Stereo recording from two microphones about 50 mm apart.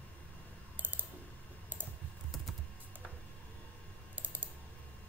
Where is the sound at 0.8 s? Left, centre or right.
Right.